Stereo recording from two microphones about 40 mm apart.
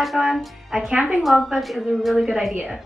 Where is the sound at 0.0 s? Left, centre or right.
Centre.